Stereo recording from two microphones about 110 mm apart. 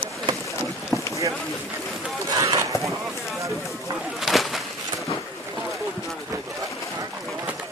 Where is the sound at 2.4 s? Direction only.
30° right (ahead or behind).